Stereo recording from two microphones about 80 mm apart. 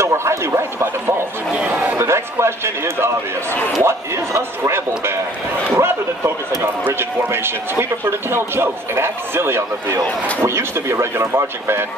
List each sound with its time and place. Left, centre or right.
0.0 s a man's voice: right
5.8 s a sound: right
6.9 s a man's voice: right